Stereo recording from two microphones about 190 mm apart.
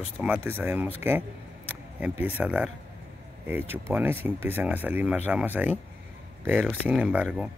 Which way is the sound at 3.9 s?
10° right (ahead or behind).